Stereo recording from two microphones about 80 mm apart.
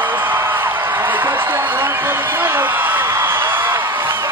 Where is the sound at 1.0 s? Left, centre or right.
Right.